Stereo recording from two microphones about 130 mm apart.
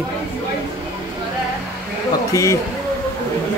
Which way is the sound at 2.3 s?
25° left (ahead or behind).